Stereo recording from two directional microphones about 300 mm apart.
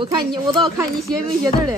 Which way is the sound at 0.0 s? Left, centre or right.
Centre.